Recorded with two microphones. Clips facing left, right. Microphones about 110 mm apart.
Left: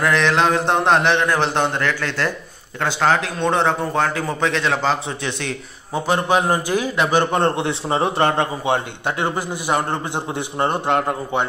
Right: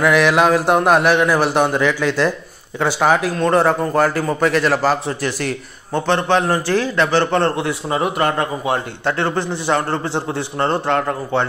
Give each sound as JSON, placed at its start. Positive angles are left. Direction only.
{"t": 0.0, "sound": "a man's voice", "side_deg": -10}
{"t": 6.0, "sound": "a man's voice", "side_deg": 10}